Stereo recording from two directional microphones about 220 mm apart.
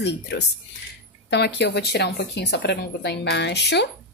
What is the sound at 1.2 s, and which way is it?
A woman's voice, 50° left (ahead or behind).